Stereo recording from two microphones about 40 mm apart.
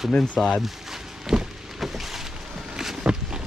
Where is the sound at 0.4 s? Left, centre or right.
Centre.